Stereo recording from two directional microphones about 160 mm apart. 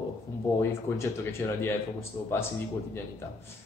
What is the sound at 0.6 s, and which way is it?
Speech, 15° left (ahead or behind).